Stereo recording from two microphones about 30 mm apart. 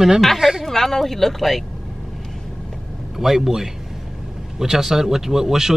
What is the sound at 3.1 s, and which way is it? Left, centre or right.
A man's voice, centre.